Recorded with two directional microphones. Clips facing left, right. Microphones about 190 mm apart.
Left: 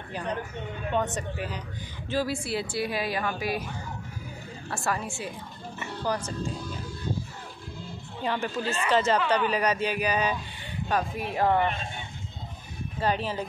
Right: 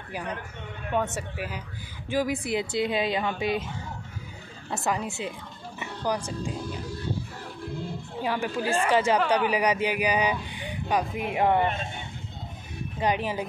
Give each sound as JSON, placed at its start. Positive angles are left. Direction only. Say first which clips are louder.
{"t": 0.9, "sound": "speech", "louder": "right 1 dB", "side_deg": -5}
{"t": 4.6, "sound": "speech", "louder": "right 2 dB", "side_deg": -20}
{"t": 8.2, "sound": "speech", "louder": "right 1 dB", "side_deg": -10}
{"t": 13.0, "sound": "speech", "louder": "right 1 dB", "side_deg": -15}